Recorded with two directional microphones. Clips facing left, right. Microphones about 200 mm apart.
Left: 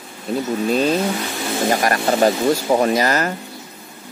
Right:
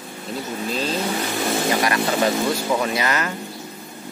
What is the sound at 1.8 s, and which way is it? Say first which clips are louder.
Speech: left 4 dB; 45° left (ahead or behind).